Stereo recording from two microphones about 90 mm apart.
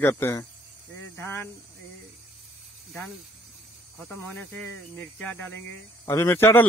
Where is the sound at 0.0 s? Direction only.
30° left (ahead or behind).